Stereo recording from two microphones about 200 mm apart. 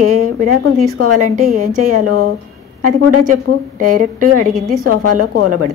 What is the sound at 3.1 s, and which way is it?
A woman's voice, 40° right (ahead or behind).